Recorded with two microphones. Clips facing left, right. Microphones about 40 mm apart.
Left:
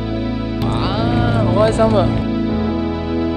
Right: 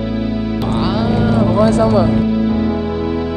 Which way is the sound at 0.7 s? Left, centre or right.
Centre.